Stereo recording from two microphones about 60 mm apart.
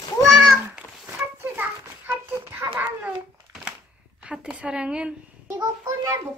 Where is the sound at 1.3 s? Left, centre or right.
Right.